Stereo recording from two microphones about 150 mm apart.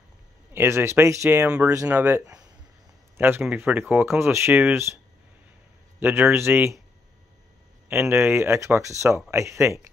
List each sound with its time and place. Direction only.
0.5 s speech: 15° right (ahead or behind)
5.9 s speech: 15° right (ahead or behind)
7.9 s speech: 15° right (ahead or behind)